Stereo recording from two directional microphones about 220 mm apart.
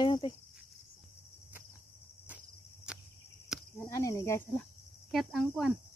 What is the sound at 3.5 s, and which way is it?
Cricket, centre (ahead or behind).